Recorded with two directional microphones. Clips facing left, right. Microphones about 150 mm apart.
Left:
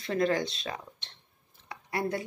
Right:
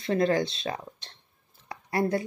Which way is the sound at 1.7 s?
35° right (ahead or behind).